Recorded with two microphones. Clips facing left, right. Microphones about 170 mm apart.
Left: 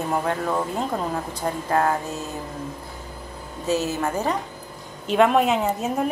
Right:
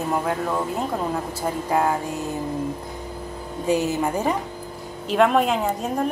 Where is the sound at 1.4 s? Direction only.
10° right (ahead or behind).